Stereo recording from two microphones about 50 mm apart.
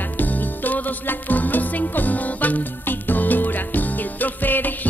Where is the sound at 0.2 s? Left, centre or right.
Left.